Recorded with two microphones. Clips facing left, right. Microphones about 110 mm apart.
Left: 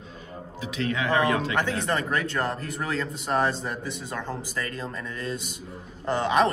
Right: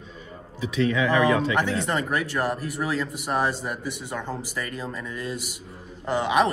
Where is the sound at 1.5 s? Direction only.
20° right (ahead or behind).